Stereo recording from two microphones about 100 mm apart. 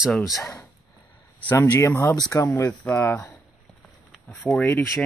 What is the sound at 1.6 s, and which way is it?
Speech, 25° left (ahead or behind).